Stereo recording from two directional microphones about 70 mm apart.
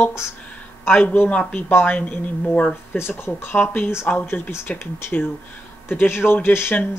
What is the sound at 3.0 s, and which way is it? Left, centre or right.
Speech, left.